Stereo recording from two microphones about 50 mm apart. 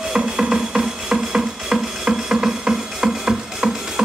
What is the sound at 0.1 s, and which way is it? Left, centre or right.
Music, centre.